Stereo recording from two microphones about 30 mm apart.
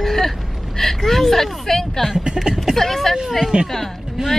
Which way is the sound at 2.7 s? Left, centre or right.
Centre.